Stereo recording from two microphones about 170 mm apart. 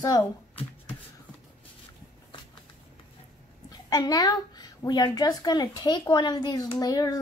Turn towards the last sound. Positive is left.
turn(degrees=20)  # may be behind; listen again after turning